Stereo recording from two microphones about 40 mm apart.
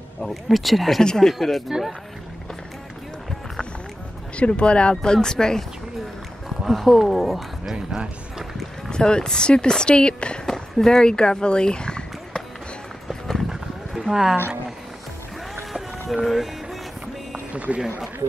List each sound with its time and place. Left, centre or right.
0.3 s speech: centre
4.4 s speech: left
6.6 s speech: centre
8.9 s speech: centre
10.4 s a sound: centre
13.1 s run: centre
13.5 s roaring cats: centre
16.1 s speech: centre
17.5 s speech: right